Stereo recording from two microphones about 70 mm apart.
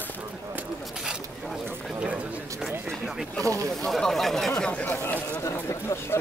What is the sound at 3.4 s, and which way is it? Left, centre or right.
Speech, right.